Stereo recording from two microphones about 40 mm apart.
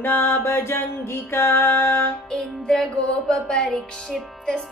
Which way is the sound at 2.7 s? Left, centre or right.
Centre.